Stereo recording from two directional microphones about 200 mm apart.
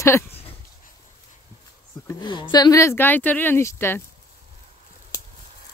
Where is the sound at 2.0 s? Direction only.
20° left (ahead or behind).